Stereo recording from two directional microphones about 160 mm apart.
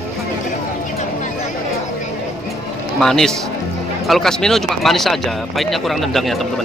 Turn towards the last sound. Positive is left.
turn(degrees=0)  # may be behind; listen again after turning